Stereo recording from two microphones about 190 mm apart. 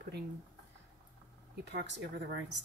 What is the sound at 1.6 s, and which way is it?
Speech, 65° right (ahead or behind).